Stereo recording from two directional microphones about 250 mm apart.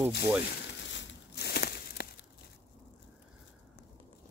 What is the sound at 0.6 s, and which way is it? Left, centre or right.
Crumpling, left.